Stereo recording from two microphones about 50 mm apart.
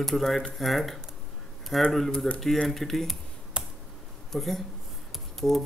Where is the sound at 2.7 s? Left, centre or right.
Centre.